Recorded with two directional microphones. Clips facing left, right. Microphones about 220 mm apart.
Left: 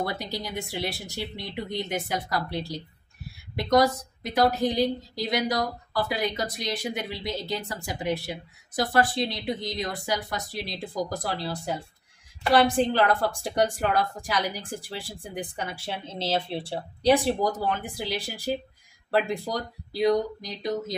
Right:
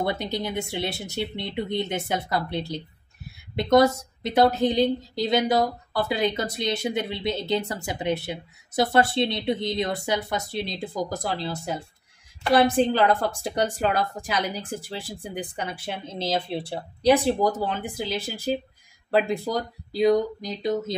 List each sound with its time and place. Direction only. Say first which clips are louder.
0.0 s a woman's voice: right 4 dB; 20° right (ahead or behind)